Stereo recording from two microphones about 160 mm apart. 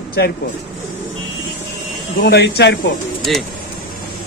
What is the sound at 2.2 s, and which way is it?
Speech, 90° left.